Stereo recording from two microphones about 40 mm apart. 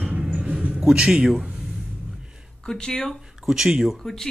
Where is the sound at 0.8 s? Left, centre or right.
Centre.